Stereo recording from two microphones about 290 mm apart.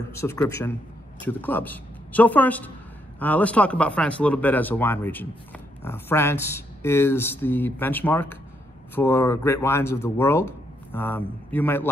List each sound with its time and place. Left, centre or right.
0.2 s speech: centre